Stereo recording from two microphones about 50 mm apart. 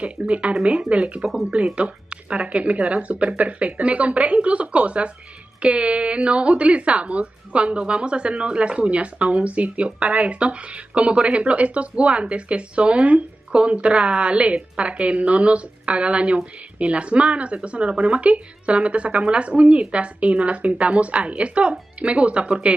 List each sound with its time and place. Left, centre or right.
0.0 s a woman's voice: right